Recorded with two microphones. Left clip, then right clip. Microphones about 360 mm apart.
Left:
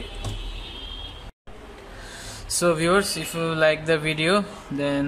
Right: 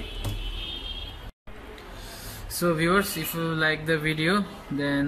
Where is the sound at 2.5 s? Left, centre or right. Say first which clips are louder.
Left 3 dB; centre.